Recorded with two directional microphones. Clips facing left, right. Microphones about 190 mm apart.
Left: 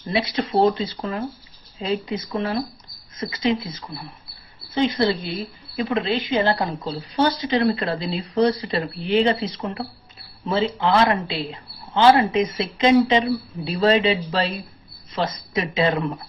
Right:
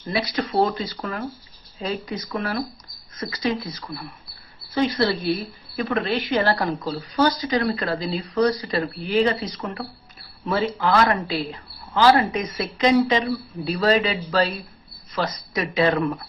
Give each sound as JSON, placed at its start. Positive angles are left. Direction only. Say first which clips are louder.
{"t": 0.1, "sound": "speech", "louder": "left 2 dB", "side_deg": 25}
{"t": 10.4, "sound": "speech", "louder": "left 1 dB", "side_deg": 20}